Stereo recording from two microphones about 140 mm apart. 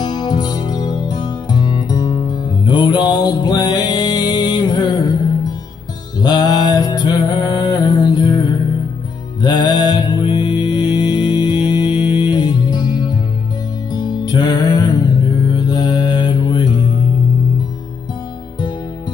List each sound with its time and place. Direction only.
0.0 s music: 30° left (ahead or behind)
9.4 s mantra: 30° left (ahead or behind)
13.9 s music: 30° left (ahead or behind)